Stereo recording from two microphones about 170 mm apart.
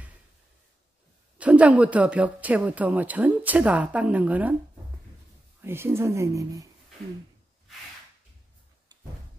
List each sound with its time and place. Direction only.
1.4 s speech: 10° right (ahead or behind)
5.6 s speech: 15° right (ahead or behind)